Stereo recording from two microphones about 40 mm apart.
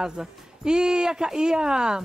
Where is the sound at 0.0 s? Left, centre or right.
Centre.